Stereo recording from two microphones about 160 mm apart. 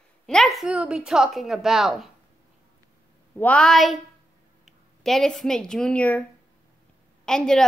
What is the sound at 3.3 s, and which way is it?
A woman's voice, 10° left (ahead or behind).